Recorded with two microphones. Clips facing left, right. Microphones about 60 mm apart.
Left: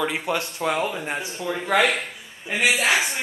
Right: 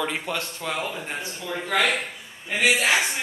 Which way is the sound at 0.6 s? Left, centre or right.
Centre.